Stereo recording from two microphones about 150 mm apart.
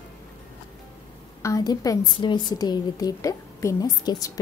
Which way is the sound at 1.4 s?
20° left (ahead or behind).